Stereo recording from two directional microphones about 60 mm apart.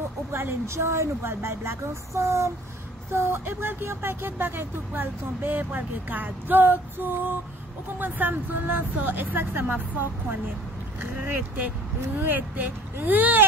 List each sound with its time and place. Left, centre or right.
0.3 s speech: right
11.0 s speech: right